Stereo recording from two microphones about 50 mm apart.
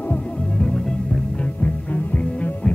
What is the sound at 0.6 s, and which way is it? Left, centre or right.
Music, centre.